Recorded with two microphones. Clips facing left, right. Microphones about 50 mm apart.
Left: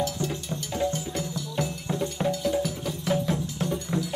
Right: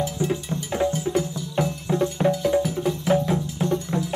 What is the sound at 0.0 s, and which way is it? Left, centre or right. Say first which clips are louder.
Music: right 4 dB; right.